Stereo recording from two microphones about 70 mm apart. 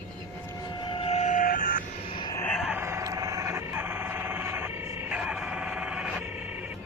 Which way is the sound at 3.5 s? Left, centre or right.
Right.